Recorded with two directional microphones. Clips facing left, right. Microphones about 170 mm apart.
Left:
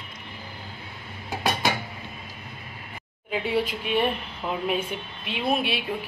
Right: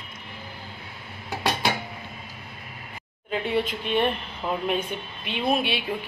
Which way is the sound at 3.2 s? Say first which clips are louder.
Even; 5° left (ahead or behind).